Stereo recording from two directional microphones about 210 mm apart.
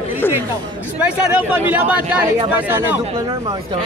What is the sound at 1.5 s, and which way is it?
Speech, 5° right (ahead or behind).